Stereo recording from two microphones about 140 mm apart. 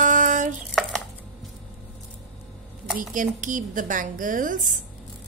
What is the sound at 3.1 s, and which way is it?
A woman's voice, 70° right (ahead or behind).